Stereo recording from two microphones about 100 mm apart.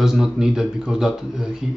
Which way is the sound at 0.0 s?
5° right (ahead or behind).